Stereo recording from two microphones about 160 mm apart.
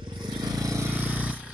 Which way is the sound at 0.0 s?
30° right (ahead or behind).